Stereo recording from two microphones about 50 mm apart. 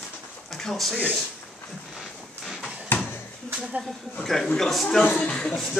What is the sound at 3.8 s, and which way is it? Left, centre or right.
A man's voice, centre.